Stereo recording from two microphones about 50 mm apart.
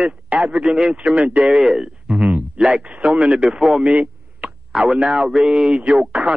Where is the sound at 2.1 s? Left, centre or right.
Right.